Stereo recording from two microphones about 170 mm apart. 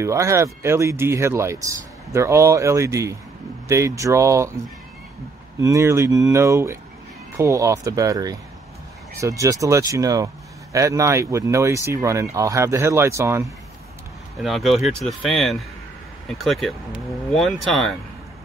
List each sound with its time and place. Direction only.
0.0 s speech: 15° right (ahead or behind)
5.6 s speech: 20° right (ahead or behind)
14.4 s speech: centre (ahead or behind)